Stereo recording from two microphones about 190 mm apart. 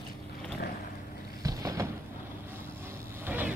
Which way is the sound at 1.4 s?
20° right (ahead or behind).